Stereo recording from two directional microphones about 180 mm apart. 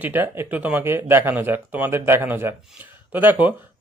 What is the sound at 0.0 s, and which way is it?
Speech, 10° right (ahead or behind).